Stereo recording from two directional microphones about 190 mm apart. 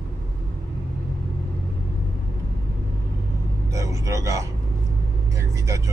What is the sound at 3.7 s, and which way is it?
Vehicle, 15° right (ahead or behind).